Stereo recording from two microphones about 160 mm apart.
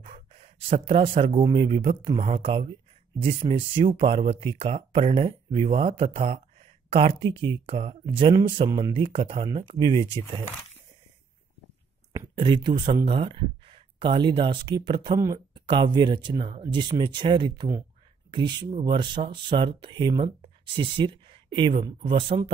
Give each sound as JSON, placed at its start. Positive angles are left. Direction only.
{"t": 0.0, "sound": "speech", "side_deg": -40}
{"t": 12.4, "sound": "speech", "side_deg": -30}
{"t": 15.1, "sound": "speech", "side_deg": -20}
{"t": 15.5, "sound": "speech", "side_deg": -30}